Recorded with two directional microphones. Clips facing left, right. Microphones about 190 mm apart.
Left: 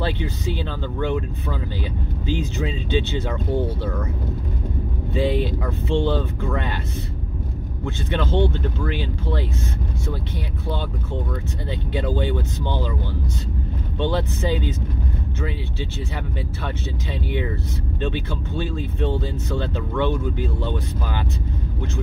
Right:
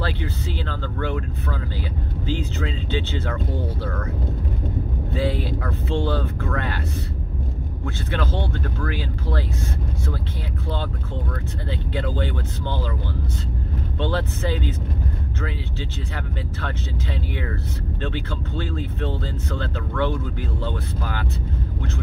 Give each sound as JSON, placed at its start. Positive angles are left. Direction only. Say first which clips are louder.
{"t": 0.0, "sound": "speech", "louder": "left 3 dB", "side_deg": 15}
{"t": 2.2, "sound": "speech", "louder": "left 2 dB", "side_deg": 15}
{"t": 5.1, "sound": "speech", "louder": "left 3 dB", "side_deg": 15}
{"t": 8.1, "sound": "speech", "louder": "left 5 dB", "side_deg": 20}
{"t": 11.9, "sound": "speech", "louder": "left 4 dB", "side_deg": 15}
{"t": 13.9, "sound": "speech", "louder": "left 2 dB", "side_deg": 15}
{"t": 16.6, "sound": "speech", "louder": "even", "side_deg": 15}